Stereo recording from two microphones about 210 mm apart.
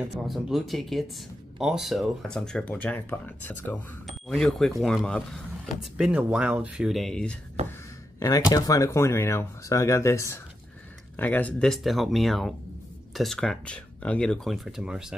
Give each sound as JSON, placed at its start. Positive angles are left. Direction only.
{"t": 0.1, "sound": "speech", "side_deg": 0}
{"t": 7.6, "sound": "a sound", "side_deg": -30}
{"t": 8.2, "sound": "speech", "side_deg": 15}